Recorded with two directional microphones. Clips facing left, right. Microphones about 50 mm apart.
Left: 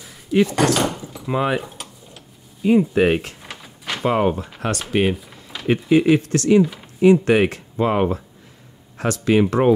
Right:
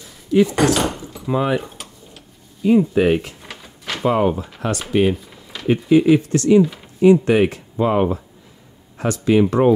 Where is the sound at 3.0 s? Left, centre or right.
Left.